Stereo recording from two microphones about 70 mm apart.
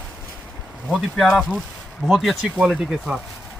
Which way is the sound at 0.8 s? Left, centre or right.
Centre.